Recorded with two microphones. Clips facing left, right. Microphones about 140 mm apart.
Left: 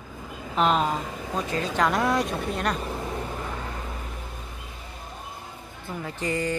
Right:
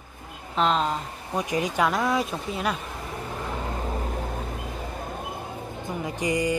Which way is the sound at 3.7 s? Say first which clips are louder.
Right 5 dB; 35° right (ahead or behind).